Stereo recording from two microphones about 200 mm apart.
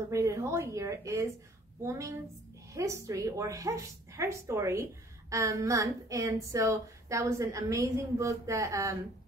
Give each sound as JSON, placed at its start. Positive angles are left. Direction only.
{"t": 0.1, "sound": "a woman's voice", "side_deg": -15}